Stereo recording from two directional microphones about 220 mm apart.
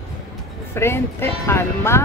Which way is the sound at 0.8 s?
10° left (ahead or behind).